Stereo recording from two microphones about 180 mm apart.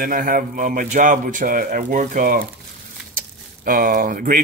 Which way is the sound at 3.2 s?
50° right (ahead or behind).